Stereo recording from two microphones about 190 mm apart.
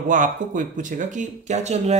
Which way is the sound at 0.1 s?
45° right (ahead or behind).